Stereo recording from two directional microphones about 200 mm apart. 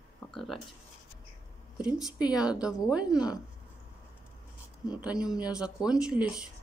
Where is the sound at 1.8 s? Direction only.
5° right (ahead or behind).